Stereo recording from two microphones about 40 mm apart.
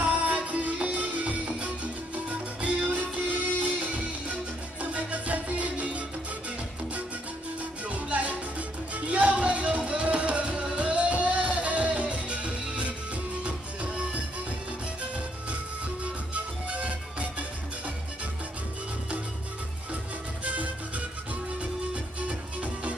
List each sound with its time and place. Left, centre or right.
0.1 s music: right
7.8 s music: right
16.0 s music: right
20.4 s music: right
22.2 s music: right